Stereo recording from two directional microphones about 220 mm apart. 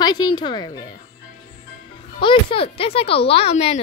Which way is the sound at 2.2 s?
25° left (ahead or behind).